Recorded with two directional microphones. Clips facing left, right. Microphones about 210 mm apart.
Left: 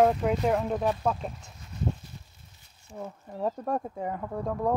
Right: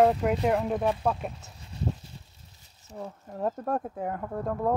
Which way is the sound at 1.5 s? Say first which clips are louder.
Even; 30° right (ahead or behind).